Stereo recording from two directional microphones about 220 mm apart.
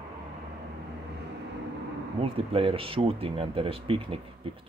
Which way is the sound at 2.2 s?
25° right (ahead or behind).